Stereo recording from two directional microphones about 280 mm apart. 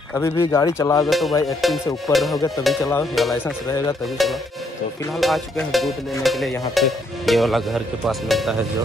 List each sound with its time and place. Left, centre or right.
0.1 s speech: centre
1.0 s speech: centre
2.8 s speech: centre
3.2 s speech: centre